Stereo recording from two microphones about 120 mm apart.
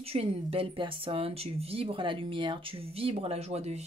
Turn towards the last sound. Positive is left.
turn(degrees=-65)  # may be behind; listen again after turning